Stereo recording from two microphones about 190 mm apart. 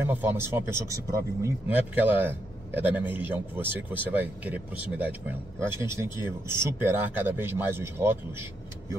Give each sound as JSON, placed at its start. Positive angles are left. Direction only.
{"t": 0.0, "sound": "speech", "side_deg": -10}